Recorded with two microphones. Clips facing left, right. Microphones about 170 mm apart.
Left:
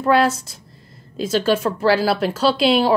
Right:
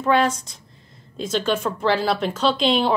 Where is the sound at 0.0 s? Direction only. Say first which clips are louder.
Left 3 dB; 5° left (ahead or behind).